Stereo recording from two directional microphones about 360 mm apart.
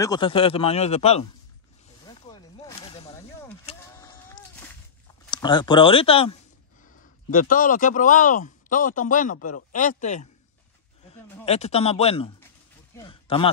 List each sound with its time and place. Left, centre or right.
0.0 s speech: centre
2.0 s snake: centre
3.6 s a sound: centre
5.3 s speech: centre
11.4 s speech: centre